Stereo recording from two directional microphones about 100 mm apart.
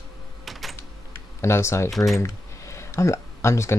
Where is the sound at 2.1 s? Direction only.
30° left (ahead or behind).